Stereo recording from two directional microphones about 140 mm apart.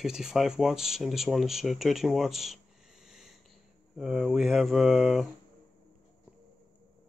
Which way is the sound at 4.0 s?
Centre (ahead or behind).